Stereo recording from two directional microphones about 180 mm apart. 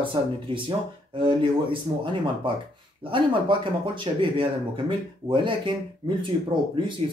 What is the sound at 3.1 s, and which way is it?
Speech, 30° right (ahead or behind).